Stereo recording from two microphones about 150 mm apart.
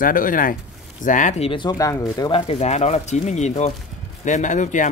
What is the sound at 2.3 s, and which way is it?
Speech, 45° left (ahead or behind).